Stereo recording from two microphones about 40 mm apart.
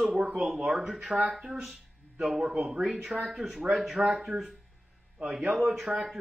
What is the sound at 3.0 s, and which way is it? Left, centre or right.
A man's voice, centre.